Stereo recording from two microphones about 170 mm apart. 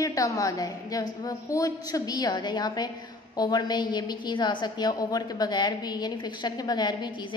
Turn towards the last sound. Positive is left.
turn(degrees=25)  # may be behind; listen again after turning